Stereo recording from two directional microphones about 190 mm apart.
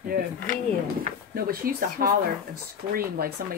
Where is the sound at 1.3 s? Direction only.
50° right (ahead or behind).